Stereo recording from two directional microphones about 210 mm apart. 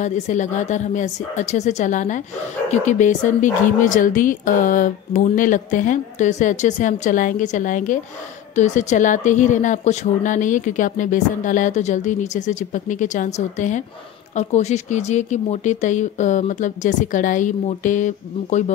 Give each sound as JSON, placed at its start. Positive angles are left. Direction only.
{"t": 0.0, "sound": "speech", "side_deg": 35}